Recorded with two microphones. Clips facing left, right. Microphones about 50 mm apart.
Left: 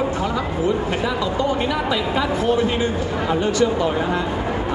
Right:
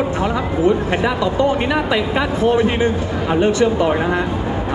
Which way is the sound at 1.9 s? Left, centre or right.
Right.